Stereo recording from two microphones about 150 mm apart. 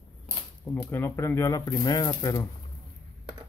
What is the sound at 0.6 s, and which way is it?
Speech, 10° left (ahead or behind).